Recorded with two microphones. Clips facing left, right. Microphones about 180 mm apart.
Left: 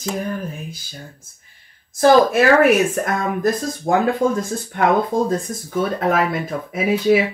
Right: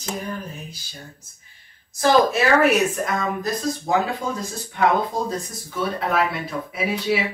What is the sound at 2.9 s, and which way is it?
Speech, 55° left (ahead or behind).